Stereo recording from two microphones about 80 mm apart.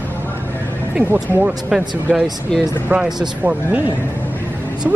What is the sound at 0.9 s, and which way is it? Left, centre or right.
Speech, centre.